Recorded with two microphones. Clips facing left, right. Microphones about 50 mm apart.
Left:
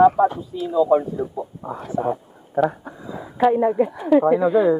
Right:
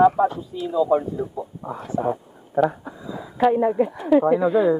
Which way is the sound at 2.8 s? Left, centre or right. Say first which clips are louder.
Even; centre.